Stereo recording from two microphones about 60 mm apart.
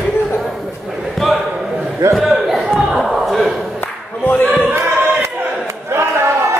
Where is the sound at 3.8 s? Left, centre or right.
Left.